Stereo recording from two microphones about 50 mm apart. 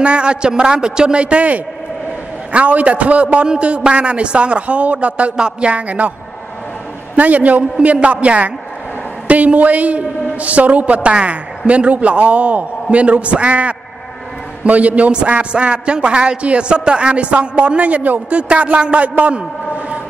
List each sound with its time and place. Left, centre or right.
0.0 s a man's voice: right
7.2 s a man's voice: right